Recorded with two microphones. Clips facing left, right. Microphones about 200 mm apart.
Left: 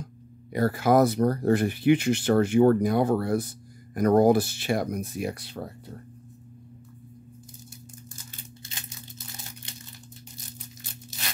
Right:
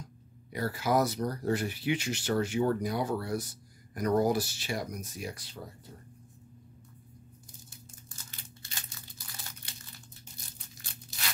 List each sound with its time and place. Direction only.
0.5 s speech: 55° left (ahead or behind)